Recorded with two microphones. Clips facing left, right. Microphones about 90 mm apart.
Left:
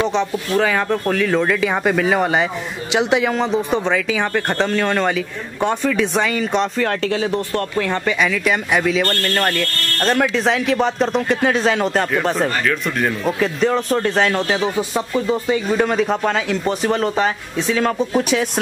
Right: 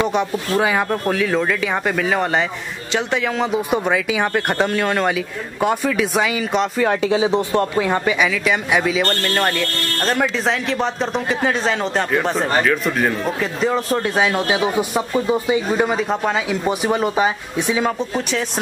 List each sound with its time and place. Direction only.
0.6 s speech: 10° right (ahead or behind)
2.9 s a man's voice: 15° left (ahead or behind)
3.3 s speech: 10° right (ahead or behind)
8.3 s speech: centre (ahead or behind)
17.9 s speech: 5° left (ahead or behind)